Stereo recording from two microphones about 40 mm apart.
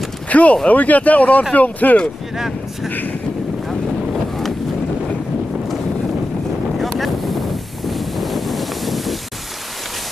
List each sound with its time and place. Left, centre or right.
0.3 s speech: left
2.3 s speech: centre
2.9 s wind noise: left
3.6 s boat: centre
6.8 s wind noise: centre